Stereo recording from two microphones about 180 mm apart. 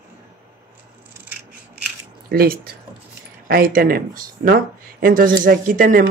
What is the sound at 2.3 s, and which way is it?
Speech, 55° right (ahead or behind).